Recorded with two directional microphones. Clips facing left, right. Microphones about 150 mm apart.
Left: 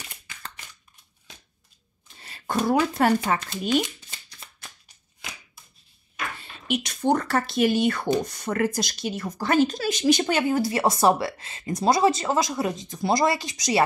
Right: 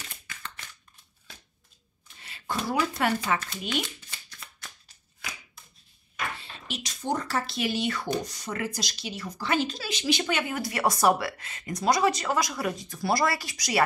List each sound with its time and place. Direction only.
2.1 s speech: 40° left (ahead or behind)
6.7 s speech: 60° left (ahead or behind); by 13.8 s 20° left (ahead or behind)